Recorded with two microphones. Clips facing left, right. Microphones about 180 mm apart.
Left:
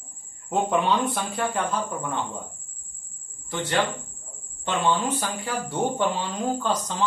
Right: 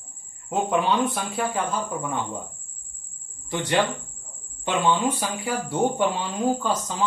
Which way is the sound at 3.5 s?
15° right (ahead or behind).